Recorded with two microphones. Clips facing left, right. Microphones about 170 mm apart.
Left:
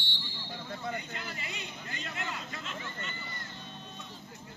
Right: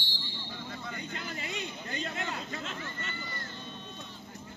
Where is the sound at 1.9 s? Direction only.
40° right (ahead or behind).